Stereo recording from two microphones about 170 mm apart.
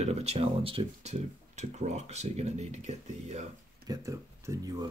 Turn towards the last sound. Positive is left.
turn(degrees=-20)  # may be behind; listen again after turning